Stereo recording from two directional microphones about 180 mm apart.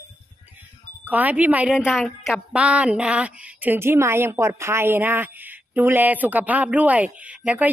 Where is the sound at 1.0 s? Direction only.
10° right (ahead or behind).